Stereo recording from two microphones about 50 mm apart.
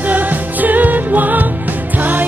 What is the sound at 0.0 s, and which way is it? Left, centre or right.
Music, right.